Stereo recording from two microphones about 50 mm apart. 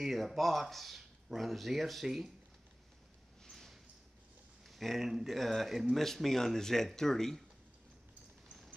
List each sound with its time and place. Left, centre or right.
0.0 s speech: centre
3.4 s a sound: centre
5.1 s speech: centre